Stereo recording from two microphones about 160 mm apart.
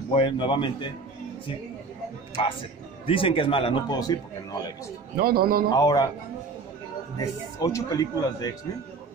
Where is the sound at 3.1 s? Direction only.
35° left (ahead or behind).